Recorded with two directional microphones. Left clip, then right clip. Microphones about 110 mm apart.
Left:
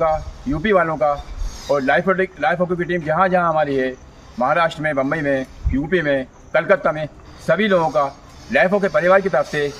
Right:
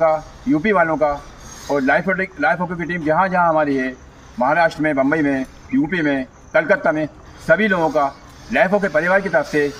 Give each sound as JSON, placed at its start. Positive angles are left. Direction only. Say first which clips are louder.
{"t": 0.0, "sound": "a man's voice", "louder": "right 2 dB", "side_deg": 20}